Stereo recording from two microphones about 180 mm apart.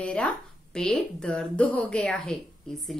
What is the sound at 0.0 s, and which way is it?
A woman's voice, 5° left (ahead or behind).